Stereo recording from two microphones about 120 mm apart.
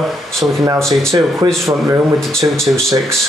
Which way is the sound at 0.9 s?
5° left (ahead or behind).